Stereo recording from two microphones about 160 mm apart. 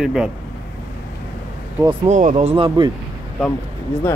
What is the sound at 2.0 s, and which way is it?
Speech, 45° right (ahead or behind).